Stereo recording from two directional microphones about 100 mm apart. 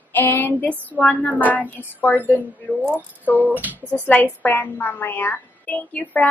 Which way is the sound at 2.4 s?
20° right (ahead or behind).